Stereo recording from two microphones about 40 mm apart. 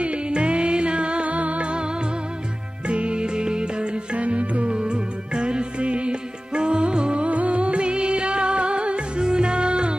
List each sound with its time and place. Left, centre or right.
0.0 s music: right
2.9 s music: right
7.2 s music: right